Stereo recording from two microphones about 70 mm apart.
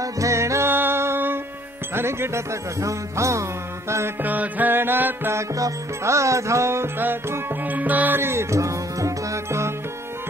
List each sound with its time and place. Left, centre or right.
0.0 s music: right
4.2 s music: right
5.3 s music: right
8.2 s music: right